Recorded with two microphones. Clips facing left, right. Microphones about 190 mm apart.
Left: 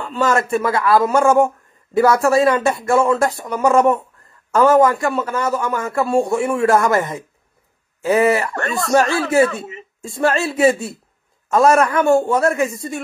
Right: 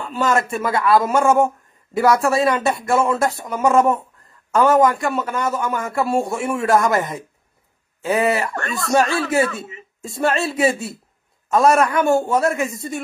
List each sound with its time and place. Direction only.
0.1 s speech: centre (ahead or behind)
8.8 s speech: 25° left (ahead or behind)
10.0 s speech: centre (ahead or behind)